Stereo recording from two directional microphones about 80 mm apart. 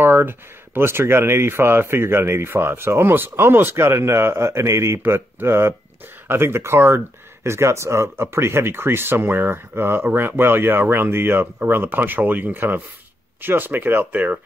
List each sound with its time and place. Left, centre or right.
0.0 s speech: right